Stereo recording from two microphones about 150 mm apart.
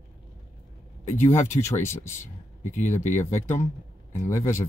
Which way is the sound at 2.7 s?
55° left (ahead or behind).